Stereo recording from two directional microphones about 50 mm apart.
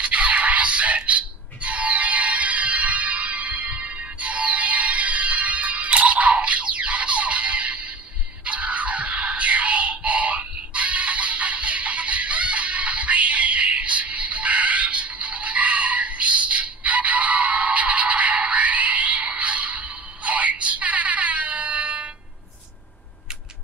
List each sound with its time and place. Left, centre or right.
0.0 s music: right